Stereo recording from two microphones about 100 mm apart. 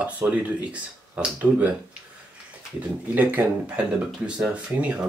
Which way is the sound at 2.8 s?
15° right (ahead or behind).